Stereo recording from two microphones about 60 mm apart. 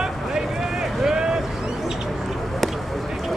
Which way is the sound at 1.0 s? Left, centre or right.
Centre.